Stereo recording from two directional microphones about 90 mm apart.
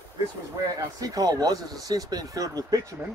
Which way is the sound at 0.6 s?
45° right (ahead or behind).